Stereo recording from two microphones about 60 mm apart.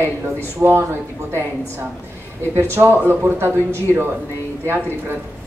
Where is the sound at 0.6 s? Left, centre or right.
Right.